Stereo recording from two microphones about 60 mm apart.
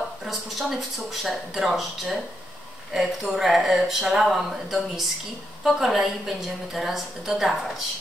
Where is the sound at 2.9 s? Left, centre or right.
Centre.